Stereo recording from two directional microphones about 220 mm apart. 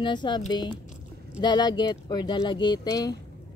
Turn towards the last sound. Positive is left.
turn(degrees=15)  # may be behind; listen again after turning